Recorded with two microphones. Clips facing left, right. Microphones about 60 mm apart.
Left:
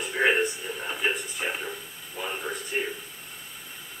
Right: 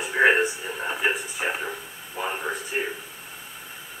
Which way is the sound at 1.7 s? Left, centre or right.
Right.